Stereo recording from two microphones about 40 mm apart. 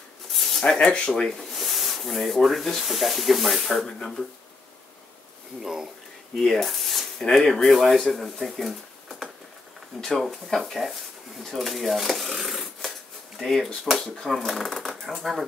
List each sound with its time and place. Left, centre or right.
0.3 s a sound: centre
0.7 s speech: left
1.2 s speech: centre
5.6 s speech: centre
6.4 s speech: centre
6.7 s a sound: centre
7.2 s speech: centre
9.9 s speech: centre
11.4 s a sound: centre
13.4 s speech: centre
14.0 s speech: centre
14.3 s speech: centre